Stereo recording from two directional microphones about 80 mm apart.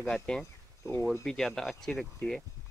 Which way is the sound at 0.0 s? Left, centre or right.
Centre.